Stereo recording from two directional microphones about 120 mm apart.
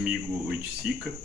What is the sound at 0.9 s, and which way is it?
Speech, 10° right (ahead or behind).